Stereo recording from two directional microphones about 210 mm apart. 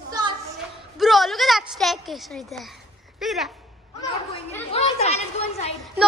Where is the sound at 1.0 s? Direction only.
Centre (ahead or behind).